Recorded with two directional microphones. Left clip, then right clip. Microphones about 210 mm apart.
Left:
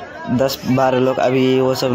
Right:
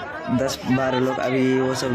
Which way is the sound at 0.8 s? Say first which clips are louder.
Left 8 dB; 15° left (ahead or behind).